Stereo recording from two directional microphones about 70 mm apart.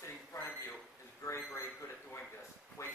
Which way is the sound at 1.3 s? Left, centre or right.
Left.